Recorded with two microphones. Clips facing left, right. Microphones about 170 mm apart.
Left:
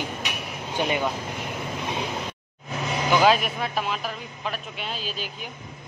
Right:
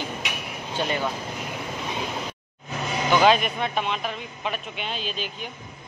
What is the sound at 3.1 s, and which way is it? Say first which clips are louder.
A man's voice: right 1 dB; 5° left (ahead or behind).